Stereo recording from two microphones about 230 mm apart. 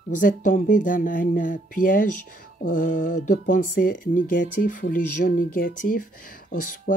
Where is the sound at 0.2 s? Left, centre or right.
Left.